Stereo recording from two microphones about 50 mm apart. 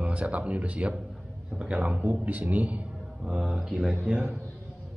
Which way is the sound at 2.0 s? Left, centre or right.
Right.